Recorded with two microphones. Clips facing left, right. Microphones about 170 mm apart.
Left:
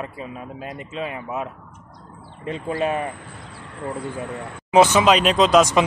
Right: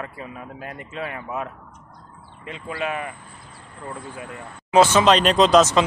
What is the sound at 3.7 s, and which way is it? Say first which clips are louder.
Speech: left 6 dB; 85° left.